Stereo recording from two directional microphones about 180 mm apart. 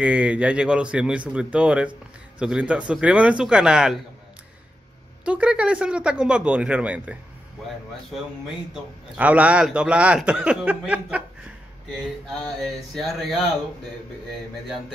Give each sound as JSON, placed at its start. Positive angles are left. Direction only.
{"t": 0.0, "sound": "a man's voice", "side_deg": -5}
{"t": 5.2, "sound": "speech", "side_deg": -5}
{"t": 9.1, "sound": "a man's voice", "side_deg": -10}